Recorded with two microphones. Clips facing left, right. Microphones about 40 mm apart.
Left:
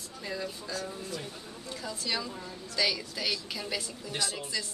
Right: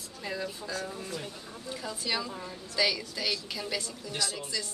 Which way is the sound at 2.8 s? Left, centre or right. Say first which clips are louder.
Right 1 dB; centre.